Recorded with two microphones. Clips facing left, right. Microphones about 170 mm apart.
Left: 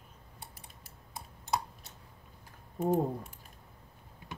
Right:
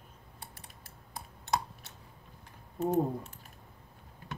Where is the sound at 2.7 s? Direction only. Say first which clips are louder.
Even; 10° left (ahead or behind).